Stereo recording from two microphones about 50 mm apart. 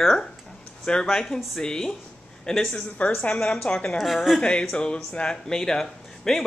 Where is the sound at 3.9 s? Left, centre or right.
Centre.